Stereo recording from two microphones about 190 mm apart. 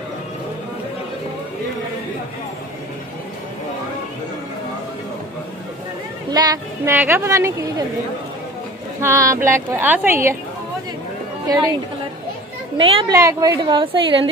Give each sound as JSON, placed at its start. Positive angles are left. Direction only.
{"t": 6.3, "sound": "a woman's voice", "side_deg": -15}
{"t": 9.0, "sound": "a woman's voice", "side_deg": -15}
{"t": 12.7, "sound": "a woman's voice", "side_deg": -20}